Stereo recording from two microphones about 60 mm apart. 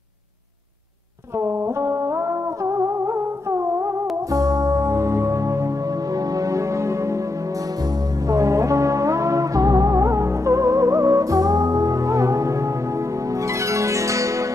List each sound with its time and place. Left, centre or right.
1.4 s music: right
6.1 s music: right
8.3 s music: right
13.5 s zither: right